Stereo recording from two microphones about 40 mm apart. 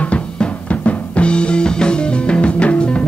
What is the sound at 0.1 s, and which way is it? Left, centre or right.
Music, left.